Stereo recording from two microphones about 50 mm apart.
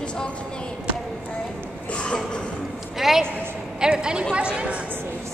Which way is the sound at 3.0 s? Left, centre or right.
Centre.